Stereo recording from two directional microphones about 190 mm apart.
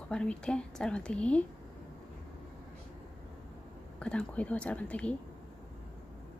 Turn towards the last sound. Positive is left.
turn(degrees=5)  # may be behind; listen again after turning